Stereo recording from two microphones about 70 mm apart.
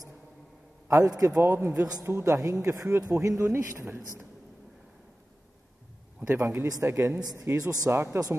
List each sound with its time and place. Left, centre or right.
0.8 s a man's voice: right
1.4 s a man's voice: right
1.7 s speech: right
2.0 s a man's voice: right
6.2 s a man's voice: right
7.5 s speech: right
7.9 s a man's voice: right